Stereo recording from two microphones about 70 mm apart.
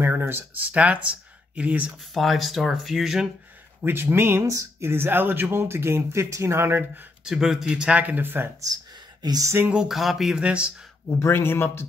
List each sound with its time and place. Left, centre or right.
0.0 s a sound: right
0.7 s speech: centre
2.1 s speech: centre
3.8 s speech: right
4.5 s speech: right
7.2 s speech: centre
8.0 s speech: right
9.2 s a sound: right
9.8 s speech: centre
11.1 s speech: left